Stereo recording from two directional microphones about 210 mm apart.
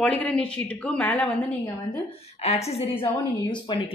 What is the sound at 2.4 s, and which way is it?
A woman's voice, 30° left (ahead or behind).